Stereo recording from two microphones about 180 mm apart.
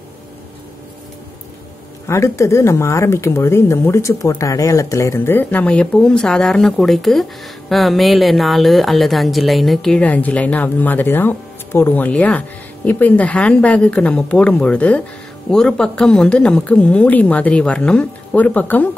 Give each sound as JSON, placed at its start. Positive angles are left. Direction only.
{"t": 2.0, "sound": "speech", "side_deg": 15}